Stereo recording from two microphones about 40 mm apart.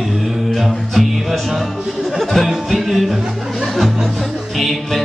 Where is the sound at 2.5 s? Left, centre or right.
Centre.